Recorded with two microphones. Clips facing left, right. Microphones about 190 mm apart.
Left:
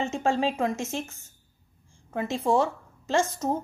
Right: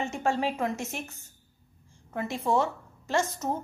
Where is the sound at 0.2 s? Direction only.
15° left (ahead or behind).